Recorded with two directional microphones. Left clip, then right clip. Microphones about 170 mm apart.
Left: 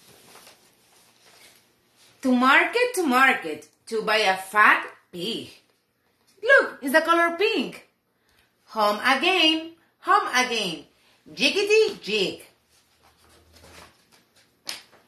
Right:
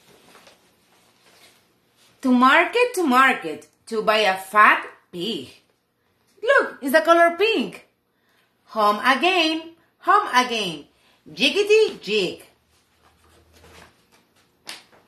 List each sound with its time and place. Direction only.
2.1 s speech: 50° right (ahead or behind)